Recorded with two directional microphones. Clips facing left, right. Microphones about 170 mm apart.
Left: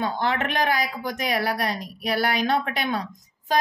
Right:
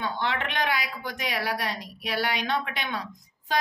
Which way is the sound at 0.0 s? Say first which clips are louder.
Left 5 dB; 45° left (ahead or behind).